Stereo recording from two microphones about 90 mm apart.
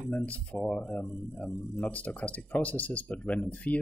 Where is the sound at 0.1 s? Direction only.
15° left (ahead or behind).